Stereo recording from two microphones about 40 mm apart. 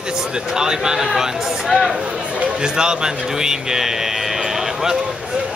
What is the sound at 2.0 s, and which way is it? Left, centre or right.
A man's voice, right.